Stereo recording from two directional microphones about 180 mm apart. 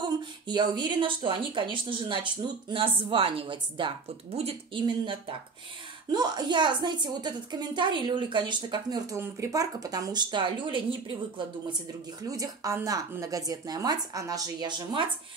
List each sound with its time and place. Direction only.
0.0 s a woman's voice: 25° right (ahead or behind)